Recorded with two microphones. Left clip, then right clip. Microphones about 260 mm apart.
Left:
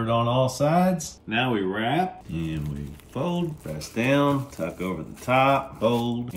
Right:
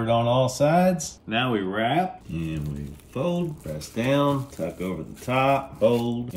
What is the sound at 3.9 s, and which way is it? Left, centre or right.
Speech, left.